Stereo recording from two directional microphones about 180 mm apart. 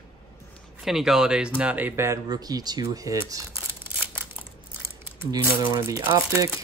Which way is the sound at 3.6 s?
10° right (ahead or behind).